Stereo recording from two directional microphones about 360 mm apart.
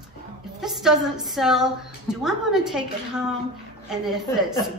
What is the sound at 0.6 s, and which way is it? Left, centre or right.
A woman's voice, centre.